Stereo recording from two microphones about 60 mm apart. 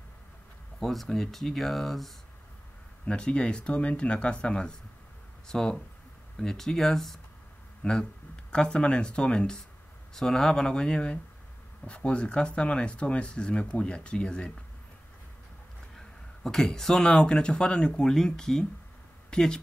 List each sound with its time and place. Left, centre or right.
0.7 s speech: centre
3.1 s speech: centre
7.8 s a sound: centre
8.7 s speech: centre
16.4 s speech: centre